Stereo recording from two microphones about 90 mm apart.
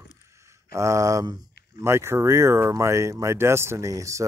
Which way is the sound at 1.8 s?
30° right (ahead or behind).